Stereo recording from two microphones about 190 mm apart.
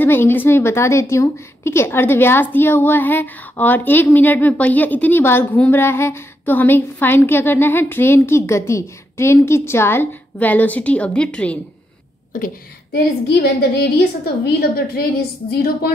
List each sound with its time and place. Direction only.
0.0 s a woman's voice: 10° left (ahead or behind)
12.3 s a woman's voice: 45° left (ahead or behind)
13.4 s a woman's voice: 60° left (ahead or behind)